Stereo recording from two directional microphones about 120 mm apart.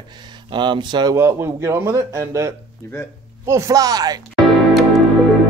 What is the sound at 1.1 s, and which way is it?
A man's voice, 20° right (ahead or behind).